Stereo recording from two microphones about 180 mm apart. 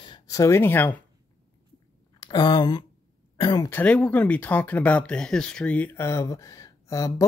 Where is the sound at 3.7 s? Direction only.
10° left (ahead or behind).